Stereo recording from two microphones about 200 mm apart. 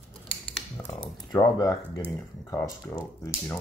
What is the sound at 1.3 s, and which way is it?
Speech, 20° left (ahead or behind).